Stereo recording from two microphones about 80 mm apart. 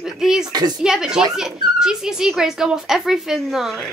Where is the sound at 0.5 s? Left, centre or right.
Right.